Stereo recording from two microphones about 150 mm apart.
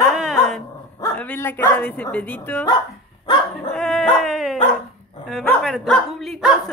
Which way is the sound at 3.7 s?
Centre (ahead or behind).